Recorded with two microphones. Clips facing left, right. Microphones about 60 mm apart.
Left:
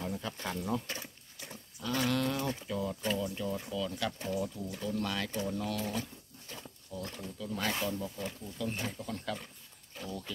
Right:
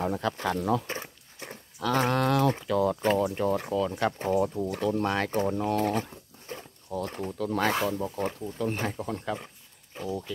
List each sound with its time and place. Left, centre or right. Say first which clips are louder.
0.0 s speech: right 9 dB; right
0.8 s a sound: right 6 dB; right
2.0 s speech: right 6 dB; right
2.2 s speech: right 9 dB; right
3.0 s speech: right 9 dB; right
3.3 s speech: right 9 dB; right
3.7 s speech: right 8 dB; right
4.9 s speech: right 8 dB; right
6.5 s a sound: right 8 dB; right
7.1 s speech: right 9 dB; right
8.0 s speech: right 9 dB; right
10.0 s speech: right 8 dB; centre